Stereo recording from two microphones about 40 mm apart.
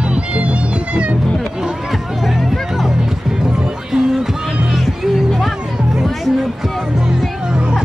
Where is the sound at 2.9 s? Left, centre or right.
Centre.